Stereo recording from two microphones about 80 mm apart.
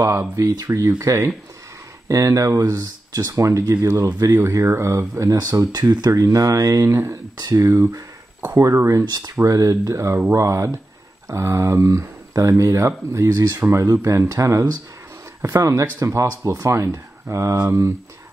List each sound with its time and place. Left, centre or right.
0.4 s speech: right
5.7 s speech: right
6.9 s speech: right
9.0 s speech: right
13.3 s speech: right
13.7 s speech: right